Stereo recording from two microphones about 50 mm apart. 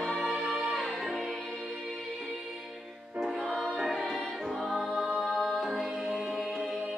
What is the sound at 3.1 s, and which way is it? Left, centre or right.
Music, centre.